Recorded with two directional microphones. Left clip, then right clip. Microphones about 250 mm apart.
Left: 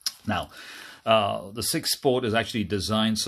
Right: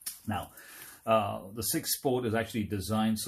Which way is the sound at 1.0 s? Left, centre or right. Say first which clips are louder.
Left 6 dB; left.